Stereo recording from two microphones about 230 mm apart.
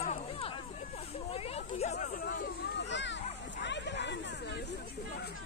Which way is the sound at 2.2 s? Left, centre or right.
Left.